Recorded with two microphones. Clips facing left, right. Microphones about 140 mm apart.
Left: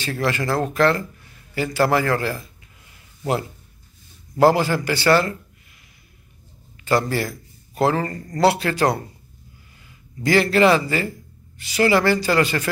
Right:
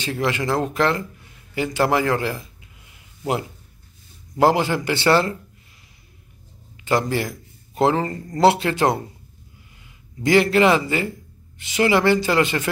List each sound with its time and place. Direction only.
0.0 s speech: 15° right (ahead or behind)
4.4 s speech: 20° right (ahead or behind)
6.8 s speech: 20° right (ahead or behind)
10.2 s speech: 20° right (ahead or behind)